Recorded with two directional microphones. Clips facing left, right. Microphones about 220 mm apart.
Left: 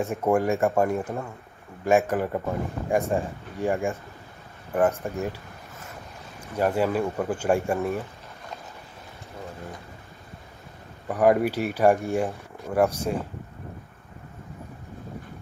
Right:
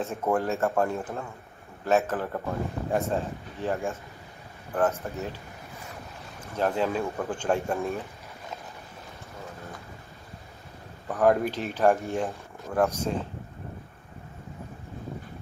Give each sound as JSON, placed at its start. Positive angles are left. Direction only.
{"t": 0.0, "sound": "speech", "side_deg": 15}
{"t": 6.5, "sound": "speech", "side_deg": 10}
{"t": 11.1, "sound": "speech", "side_deg": 10}